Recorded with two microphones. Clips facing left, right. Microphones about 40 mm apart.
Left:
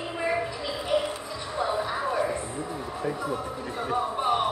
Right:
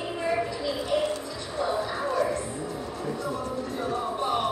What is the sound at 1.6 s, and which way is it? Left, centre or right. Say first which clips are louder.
Music: even; centre.